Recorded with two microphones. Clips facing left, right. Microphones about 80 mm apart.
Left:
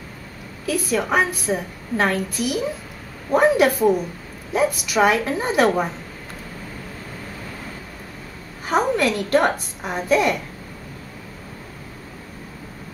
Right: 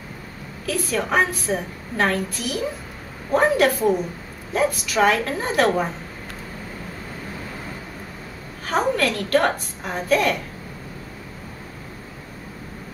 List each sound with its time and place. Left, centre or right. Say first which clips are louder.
0.7 s a woman's voice: left 2 dB; centre
3.3 s a woman's voice: left 2 dB; centre
8.6 s a woman's voice: left 2 dB; centre